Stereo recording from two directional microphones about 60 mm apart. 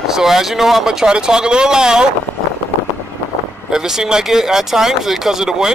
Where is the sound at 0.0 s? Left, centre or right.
Centre.